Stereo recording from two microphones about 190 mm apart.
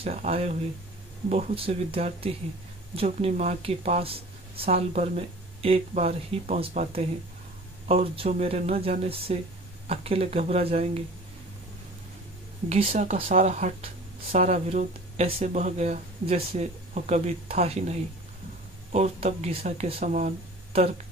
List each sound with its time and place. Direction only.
0.0 s speech: 35° right (ahead or behind)
12.6 s speech: 35° right (ahead or behind)